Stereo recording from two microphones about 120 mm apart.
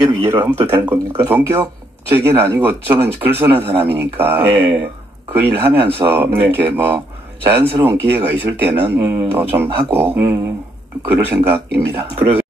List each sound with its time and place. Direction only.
0.5 s speech: 20° right (ahead or behind)